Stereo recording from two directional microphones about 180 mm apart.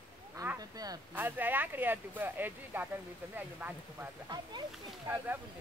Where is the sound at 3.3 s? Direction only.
10° right (ahead or behind).